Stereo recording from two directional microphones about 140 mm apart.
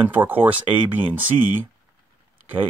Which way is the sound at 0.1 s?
15° right (ahead or behind).